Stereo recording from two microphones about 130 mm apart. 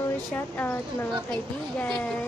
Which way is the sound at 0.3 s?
15° left (ahead or behind).